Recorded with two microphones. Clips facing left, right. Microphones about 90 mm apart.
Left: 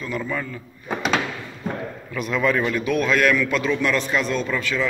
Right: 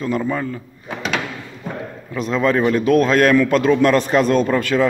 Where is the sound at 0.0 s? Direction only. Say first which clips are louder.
Right 6 dB; 30° right (ahead or behind).